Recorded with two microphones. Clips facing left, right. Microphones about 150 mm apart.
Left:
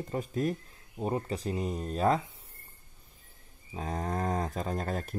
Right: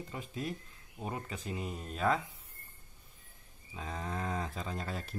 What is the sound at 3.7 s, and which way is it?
Speech, 45° left (ahead or behind).